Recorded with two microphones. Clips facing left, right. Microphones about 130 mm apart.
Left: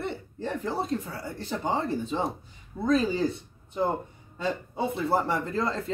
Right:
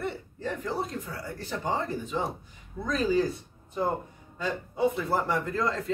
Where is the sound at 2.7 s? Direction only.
35° left (ahead or behind).